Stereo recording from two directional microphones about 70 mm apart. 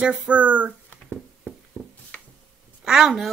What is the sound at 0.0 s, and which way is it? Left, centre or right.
Speech, centre.